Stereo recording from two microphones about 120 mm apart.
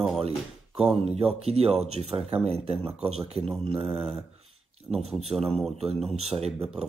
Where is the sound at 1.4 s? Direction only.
60° right (ahead or behind).